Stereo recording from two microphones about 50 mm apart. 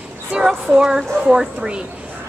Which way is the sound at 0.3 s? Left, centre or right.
Centre.